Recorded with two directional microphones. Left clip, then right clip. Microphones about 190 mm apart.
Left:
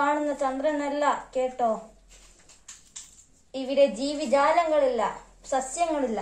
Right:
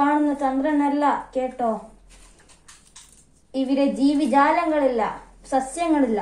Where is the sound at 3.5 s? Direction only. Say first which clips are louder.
Even; centre (ahead or behind).